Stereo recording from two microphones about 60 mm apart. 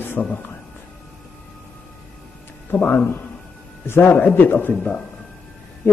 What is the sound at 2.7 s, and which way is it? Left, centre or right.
A man's voice, left.